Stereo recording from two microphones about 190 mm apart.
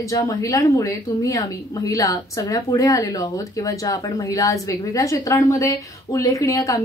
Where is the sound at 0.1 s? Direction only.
15° left (ahead or behind).